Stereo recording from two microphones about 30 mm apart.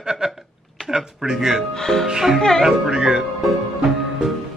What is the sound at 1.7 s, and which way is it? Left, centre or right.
Speech, centre.